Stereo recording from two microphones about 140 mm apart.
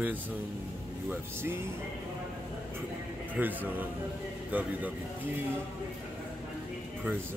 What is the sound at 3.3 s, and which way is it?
Speech, 10° right (ahead or behind).